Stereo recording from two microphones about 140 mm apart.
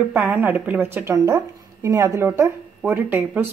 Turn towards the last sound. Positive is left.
turn(degrees=-15)  # may be behind; listen again after turning